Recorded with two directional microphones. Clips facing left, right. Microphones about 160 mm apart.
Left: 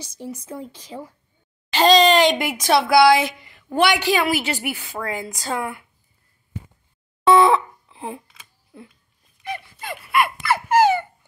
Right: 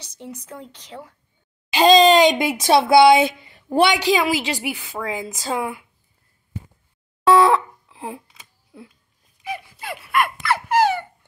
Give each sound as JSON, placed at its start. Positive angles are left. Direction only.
{"t": 0.0, "sound": "speech", "side_deg": 10}
{"t": 1.7, "sound": "speech", "side_deg": -15}
{"t": 3.8, "sound": "speech", "side_deg": -20}
{"t": 4.8, "sound": "speech", "side_deg": 0}
{"t": 7.2, "sound": "dog", "side_deg": 0}
{"t": 8.7, "sound": "speech", "side_deg": 0}
{"t": 9.4, "sound": "dog", "side_deg": -5}
{"t": 10.1, "sound": "a sound", "side_deg": 5}